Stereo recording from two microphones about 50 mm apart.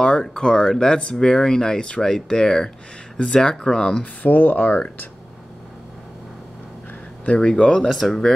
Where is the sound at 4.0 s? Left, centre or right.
Left.